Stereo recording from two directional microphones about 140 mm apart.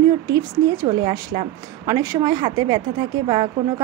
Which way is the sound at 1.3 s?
45° right (ahead or behind).